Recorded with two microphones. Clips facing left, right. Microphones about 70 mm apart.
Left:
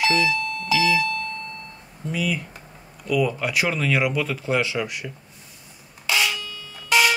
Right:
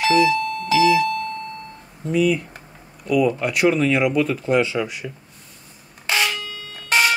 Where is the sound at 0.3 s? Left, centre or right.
Right.